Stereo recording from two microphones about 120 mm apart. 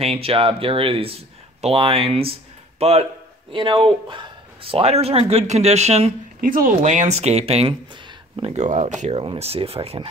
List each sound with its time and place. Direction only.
0.0 s speech: 55° right (ahead or behind)
3.5 s speech: 45° right (ahead or behind); by 6.1 s 60° right (ahead or behind)
6.8 s speech: 85° right; by 7.7 s 60° right (ahead or behind)
8.5 s speech: 80° right
9.2 s speech: 55° right (ahead or behind)